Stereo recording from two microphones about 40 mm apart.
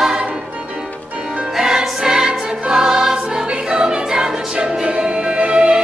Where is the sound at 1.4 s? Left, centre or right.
Centre.